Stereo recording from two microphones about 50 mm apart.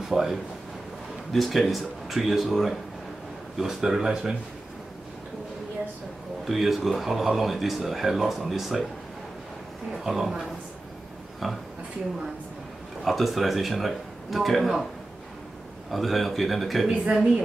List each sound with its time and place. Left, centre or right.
0.0 s speech: centre
6.4 s speech: centre
9.9 s speech: centre
13.0 s speech: centre
15.9 s speech: centre
16.8 s speech: centre